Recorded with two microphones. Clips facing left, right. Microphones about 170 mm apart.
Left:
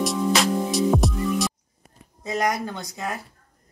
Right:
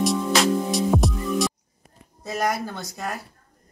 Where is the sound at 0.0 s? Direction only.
Centre (ahead or behind).